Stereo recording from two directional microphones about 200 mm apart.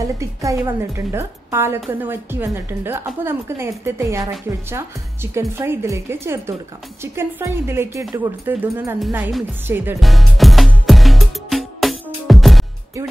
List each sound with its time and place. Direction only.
0.0 s speech: 15° right (ahead or behind)
9.9 s music: centre (ahead or behind)